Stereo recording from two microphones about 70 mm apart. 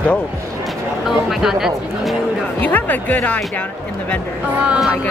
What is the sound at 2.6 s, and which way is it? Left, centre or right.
Speech, left.